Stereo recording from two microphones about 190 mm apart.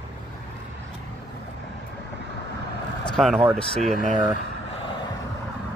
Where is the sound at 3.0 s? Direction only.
Centre (ahead or behind).